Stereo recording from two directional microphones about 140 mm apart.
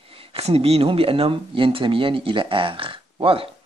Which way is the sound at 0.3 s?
45° right (ahead or behind).